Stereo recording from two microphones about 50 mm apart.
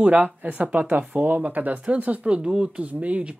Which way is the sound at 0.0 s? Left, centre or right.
Right.